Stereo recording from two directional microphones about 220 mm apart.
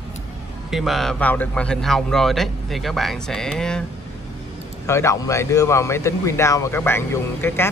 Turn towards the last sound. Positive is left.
turn(degrees=10)  # may be behind; listen again after turning